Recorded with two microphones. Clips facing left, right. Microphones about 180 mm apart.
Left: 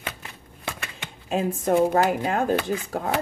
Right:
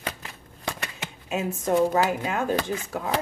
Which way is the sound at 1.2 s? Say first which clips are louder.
Left 3 dB; 35° left (ahead or behind).